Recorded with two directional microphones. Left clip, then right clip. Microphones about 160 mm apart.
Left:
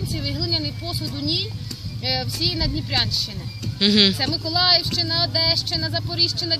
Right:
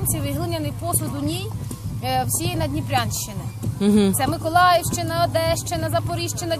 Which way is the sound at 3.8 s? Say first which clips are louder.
Left 3 dB; 30° right (ahead or behind).